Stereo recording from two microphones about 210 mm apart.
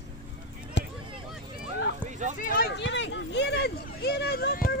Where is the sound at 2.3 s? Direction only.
40° left (ahead or behind).